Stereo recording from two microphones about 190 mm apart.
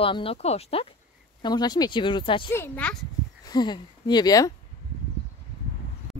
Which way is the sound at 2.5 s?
10° left (ahead or behind).